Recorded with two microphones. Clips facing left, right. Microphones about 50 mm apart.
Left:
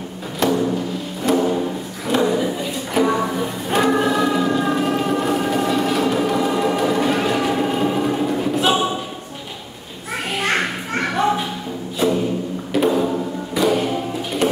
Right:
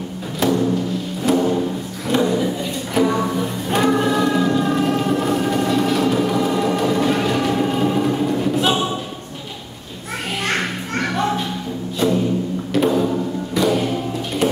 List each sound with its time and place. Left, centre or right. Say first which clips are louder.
0.4 s music: right 1 dB; centre
10.4 s music: left 2 dB; centre